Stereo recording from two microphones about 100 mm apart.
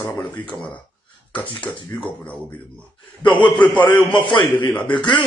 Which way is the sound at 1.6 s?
15° left (ahead or behind).